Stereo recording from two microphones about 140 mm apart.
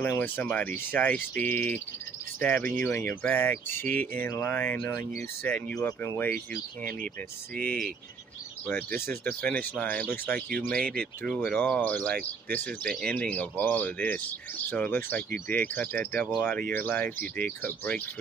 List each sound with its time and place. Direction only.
0.0 s speech: 15° left (ahead or behind)
6.3 s speech: 85° right
8.9 s speech: 90° right
9.2 s speech: 10° left (ahead or behind)
10.8 s speech: 90° right
11.2 s speech: 5° left (ahead or behind)